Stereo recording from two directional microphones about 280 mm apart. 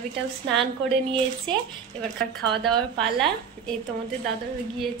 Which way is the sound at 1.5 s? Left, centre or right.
Centre.